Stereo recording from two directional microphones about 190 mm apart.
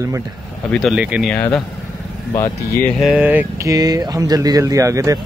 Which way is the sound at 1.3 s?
5° left (ahead or behind).